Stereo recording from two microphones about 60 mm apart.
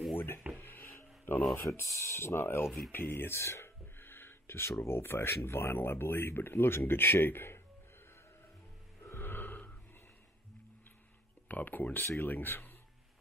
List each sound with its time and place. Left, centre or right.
0.1 s wood: left
0.6 s a sound: left
1.5 s speech: left
3.3 s speech: left
4.0 s speech: left
9.0 s music: left
11.4 s speech: left